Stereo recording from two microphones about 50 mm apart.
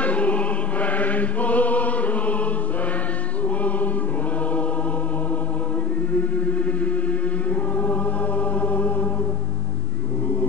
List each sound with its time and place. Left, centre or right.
0.0 s chant: left
3.4 s music: left
6.1 s chant: left